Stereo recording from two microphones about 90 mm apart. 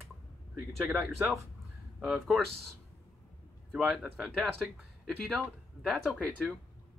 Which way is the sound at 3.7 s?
Centre (ahead or behind).